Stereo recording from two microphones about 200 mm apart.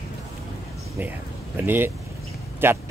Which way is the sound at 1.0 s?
10° right (ahead or behind).